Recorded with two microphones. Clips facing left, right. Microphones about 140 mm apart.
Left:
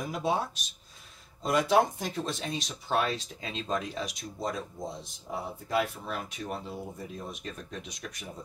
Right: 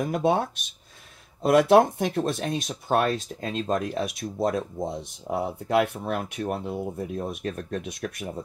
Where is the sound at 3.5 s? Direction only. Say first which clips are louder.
Right 6 dB; 50° right (ahead or behind).